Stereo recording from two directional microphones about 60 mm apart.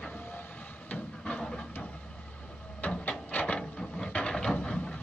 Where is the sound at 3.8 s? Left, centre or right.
Centre.